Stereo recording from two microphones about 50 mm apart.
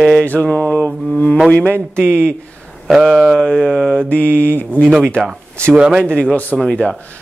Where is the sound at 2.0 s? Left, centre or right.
Right.